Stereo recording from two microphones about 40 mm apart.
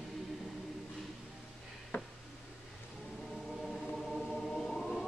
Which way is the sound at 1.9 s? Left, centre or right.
Left.